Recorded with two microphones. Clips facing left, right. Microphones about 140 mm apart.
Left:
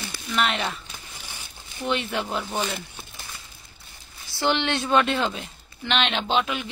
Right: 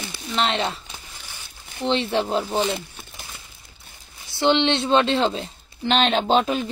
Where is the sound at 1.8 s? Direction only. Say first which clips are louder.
Right 5 dB; 30° right (ahead or behind).